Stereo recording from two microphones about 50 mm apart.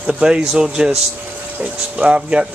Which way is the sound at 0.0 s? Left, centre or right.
Centre.